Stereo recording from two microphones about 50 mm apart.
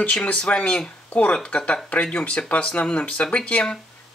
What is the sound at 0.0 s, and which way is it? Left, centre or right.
Speech, left.